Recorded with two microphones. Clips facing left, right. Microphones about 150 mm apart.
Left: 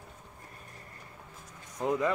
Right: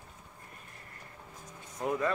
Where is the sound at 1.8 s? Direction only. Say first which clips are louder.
Left 2 dB; 20° left (ahead or behind).